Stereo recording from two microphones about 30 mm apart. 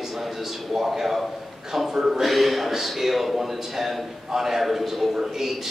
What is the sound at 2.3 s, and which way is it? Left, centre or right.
A man's voice, centre.